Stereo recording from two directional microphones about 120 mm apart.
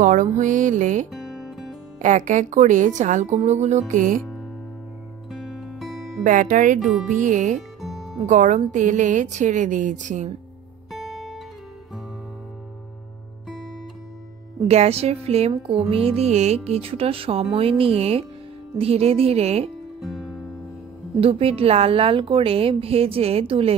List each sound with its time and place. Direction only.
0.0 s a woman's voice: 90° right
1.1 s music: centre (ahead or behind)
2.0 s a woman's voice: 90° right
5.3 s music: 5° right (ahead or behind)
6.2 s a woman's voice: 90° right
7.8 s music: centre (ahead or behind)
8.3 s a woman's voice: 90° right
10.9 s music: centre (ahead or behind)
14.6 s a woman's voice: 65° right (ahead or behind)
20.0 s music: centre (ahead or behind)
21.2 s a woman's voice: 55° right (ahead or behind)